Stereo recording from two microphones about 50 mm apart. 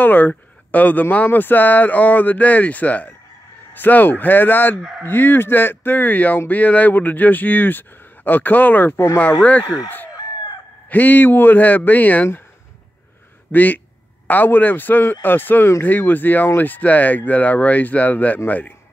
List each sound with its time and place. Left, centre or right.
0.0 s speech: left
10.9 s speech: left
13.5 s speech: left